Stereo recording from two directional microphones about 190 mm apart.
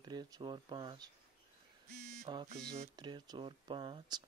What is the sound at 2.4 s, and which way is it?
Speech, 40° right (ahead or behind).